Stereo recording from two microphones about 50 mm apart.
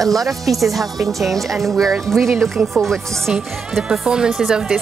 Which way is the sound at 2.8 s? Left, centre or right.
Centre.